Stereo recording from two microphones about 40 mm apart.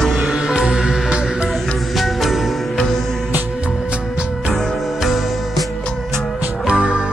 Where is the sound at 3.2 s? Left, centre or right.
Right.